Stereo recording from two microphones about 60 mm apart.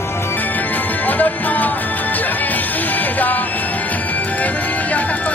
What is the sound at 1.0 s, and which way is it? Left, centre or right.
Music, left.